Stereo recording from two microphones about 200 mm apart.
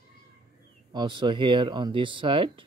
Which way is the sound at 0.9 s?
20° right (ahead or behind).